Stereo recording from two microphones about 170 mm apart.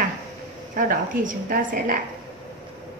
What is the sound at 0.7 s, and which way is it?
A woman's voice, 55° right (ahead or behind).